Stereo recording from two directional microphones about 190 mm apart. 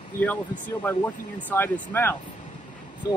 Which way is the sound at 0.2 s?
10° left (ahead or behind).